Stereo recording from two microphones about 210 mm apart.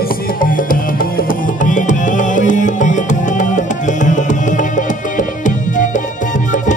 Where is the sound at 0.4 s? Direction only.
40° left (ahead or behind).